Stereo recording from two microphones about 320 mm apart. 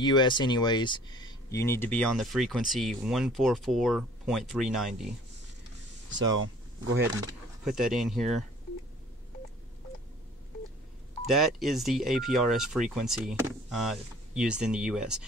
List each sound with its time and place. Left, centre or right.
0.0 s speech: centre
6.2 s speech: right
7.2 s speech: centre
11.2 s speech: centre